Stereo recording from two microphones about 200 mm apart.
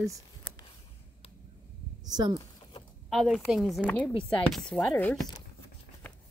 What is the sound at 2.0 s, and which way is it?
Speech, 20° right (ahead or behind).